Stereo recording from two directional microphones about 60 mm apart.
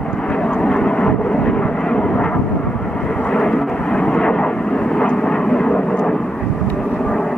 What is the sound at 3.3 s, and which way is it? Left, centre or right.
Vehicle, centre.